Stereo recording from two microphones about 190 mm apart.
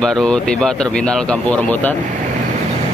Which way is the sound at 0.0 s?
5° left (ahead or behind).